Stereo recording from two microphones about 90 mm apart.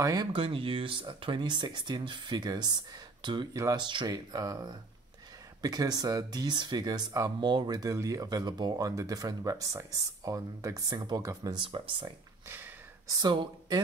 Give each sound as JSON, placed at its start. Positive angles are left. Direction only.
{"t": 0.0, "sound": "speech", "side_deg": -40}
{"t": 0.3, "sound": "speech", "side_deg": -90}
{"t": 4.1, "sound": "speech", "side_deg": -45}
{"t": 11.5, "sound": "speech", "side_deg": -65}
{"t": 12.4, "sound": "a sound", "side_deg": -25}
{"t": 13.1, "sound": "speech", "side_deg": -55}